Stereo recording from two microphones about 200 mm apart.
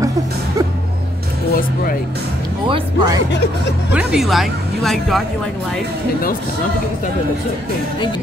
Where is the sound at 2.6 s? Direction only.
25° right (ahead or behind).